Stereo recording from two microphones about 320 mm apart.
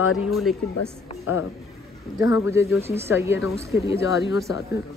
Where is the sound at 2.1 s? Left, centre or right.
Centre.